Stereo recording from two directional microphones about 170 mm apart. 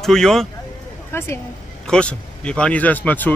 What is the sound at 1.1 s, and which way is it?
Speech, 15° left (ahead or behind).